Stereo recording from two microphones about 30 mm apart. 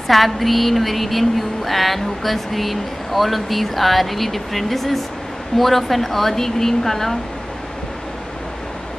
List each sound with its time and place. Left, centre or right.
0.1 s a woman's voice: centre